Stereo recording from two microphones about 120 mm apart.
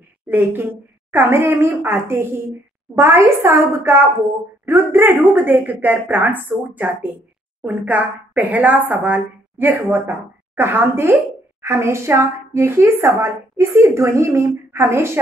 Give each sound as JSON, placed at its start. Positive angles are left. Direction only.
{"t": 0.3, "sound": "a woman's voice", "side_deg": -15}